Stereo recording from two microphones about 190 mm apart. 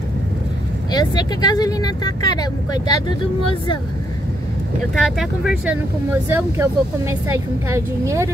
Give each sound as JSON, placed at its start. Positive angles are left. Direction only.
{"t": 0.9, "sound": "speech", "side_deg": 20}
{"t": 4.9, "sound": "speech", "side_deg": 0}
{"t": 6.2, "sound": "a woman's voice", "side_deg": -15}